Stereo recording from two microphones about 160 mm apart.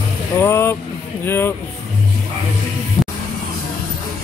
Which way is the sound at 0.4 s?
15° left (ahead or behind).